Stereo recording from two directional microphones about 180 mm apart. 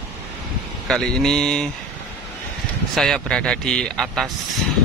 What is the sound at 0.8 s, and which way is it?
Speech, 5° left (ahead or behind).